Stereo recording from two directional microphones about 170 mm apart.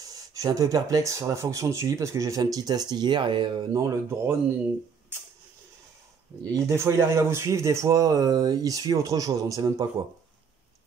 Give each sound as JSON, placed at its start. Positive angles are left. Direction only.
{"t": 0.0, "sound": "speech", "side_deg": -20}
{"t": 6.5, "sound": "speech", "side_deg": -15}